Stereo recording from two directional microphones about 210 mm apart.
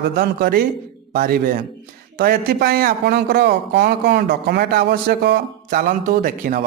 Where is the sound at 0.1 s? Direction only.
45° right (ahead or behind).